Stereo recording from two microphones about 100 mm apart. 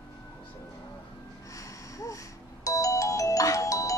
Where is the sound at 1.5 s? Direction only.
35° left (ahead or behind).